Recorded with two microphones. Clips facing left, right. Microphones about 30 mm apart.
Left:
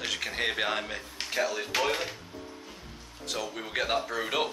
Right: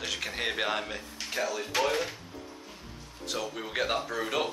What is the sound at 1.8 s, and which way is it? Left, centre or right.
Speech, left.